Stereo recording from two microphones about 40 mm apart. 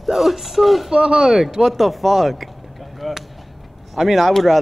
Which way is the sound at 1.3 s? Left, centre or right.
Centre.